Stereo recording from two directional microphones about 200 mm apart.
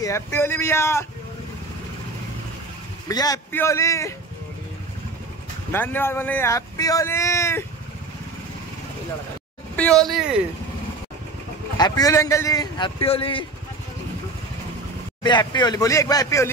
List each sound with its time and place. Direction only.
0.0 s speech: 15° left (ahead or behind)
3.1 s speech: 20° left (ahead or behind)
5.7 s speech: 10° left (ahead or behind)
9.8 s speech: 5° left (ahead or behind)
11.7 s a man's voice: 20° left (ahead or behind)
15.2 s speech: 20° left (ahead or behind)